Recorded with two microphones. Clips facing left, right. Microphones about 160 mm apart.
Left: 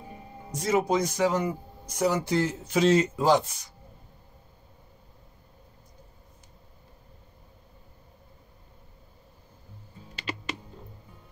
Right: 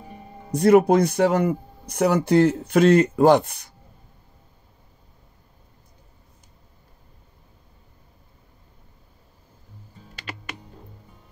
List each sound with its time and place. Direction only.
0.5 s speech: 60° right (ahead or behind)